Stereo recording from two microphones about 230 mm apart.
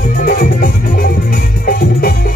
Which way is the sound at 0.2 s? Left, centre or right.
Left.